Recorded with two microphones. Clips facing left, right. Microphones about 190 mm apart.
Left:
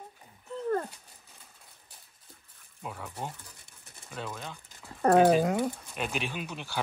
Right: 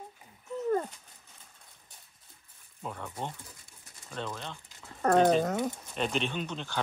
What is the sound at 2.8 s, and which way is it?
Speech, 5° left (ahead or behind).